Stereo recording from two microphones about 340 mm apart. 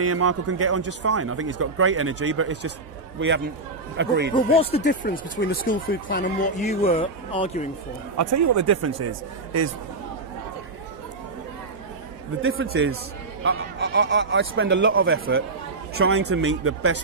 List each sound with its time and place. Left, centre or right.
0.0 s a man's voice: right
4.3 s speech: centre
8.2 s speech: right
12.4 s a man's voice: right